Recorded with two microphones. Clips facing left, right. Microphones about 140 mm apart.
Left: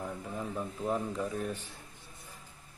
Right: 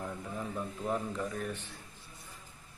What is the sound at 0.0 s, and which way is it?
Speech, 5° left (ahead or behind).